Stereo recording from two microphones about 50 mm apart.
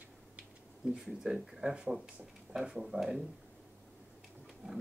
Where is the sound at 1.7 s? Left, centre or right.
Right.